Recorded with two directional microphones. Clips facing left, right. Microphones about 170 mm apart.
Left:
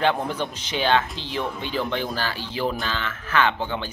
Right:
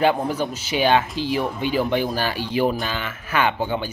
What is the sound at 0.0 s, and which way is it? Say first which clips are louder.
Speech: right 3 dB; 5° right (ahead or behind).